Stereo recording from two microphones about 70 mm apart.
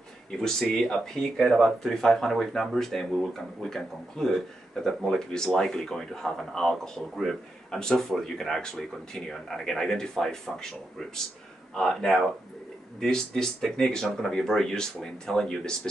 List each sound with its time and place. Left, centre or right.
0.4 s speech: centre